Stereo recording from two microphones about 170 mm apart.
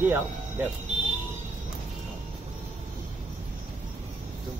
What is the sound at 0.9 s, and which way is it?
Vehicle, 40° right (ahead or behind).